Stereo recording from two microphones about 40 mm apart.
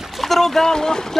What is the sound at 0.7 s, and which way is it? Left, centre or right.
Speech, centre.